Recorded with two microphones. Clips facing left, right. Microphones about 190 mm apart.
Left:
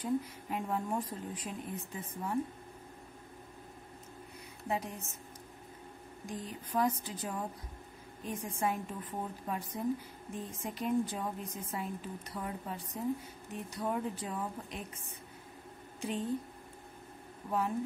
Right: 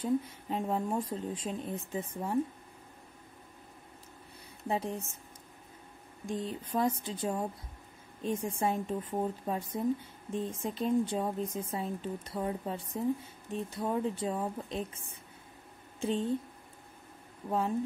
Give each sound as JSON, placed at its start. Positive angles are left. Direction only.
{"t": 0.0, "sound": "speech", "side_deg": -25}
{"t": 4.6, "sound": "speech", "side_deg": -30}
{"t": 6.2, "sound": "speech", "side_deg": -25}
{"t": 16.0, "sound": "a woman's voice", "side_deg": -25}